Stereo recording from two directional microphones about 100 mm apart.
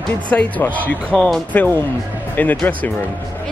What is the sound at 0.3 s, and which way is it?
Speech, 15° left (ahead or behind).